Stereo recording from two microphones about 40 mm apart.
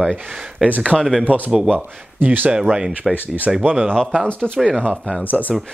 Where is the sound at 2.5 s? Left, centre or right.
Right.